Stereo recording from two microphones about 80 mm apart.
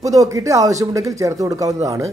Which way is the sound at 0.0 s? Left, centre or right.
Right.